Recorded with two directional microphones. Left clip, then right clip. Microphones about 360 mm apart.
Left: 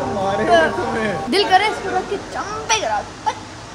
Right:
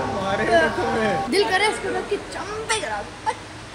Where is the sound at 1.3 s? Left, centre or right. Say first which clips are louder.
Left 8 dB; centre.